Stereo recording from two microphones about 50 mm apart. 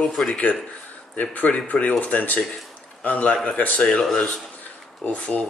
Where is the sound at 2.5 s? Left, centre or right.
Left.